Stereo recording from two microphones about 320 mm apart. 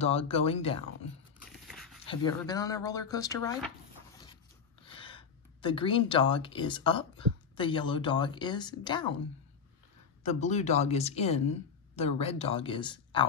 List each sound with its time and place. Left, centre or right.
0.0 s a woman's voice: centre
1.5 s dog: centre
2.0 s speech: centre
4.8 s speech: centre
10.2 s a woman's voice: left